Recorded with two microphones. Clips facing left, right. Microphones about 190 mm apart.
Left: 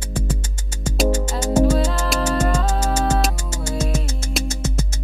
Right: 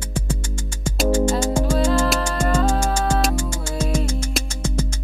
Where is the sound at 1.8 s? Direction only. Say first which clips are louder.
Right 2 dB; 5° right (ahead or behind).